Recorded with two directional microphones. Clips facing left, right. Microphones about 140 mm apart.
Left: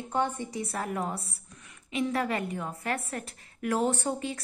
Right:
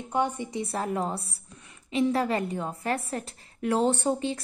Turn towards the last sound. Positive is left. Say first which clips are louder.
# right 4 dB
turn(degrees=-30)  # may be behind; listen again after turning